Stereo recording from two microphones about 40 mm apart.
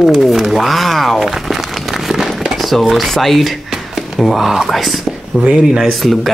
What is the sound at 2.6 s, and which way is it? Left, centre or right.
Speech, centre.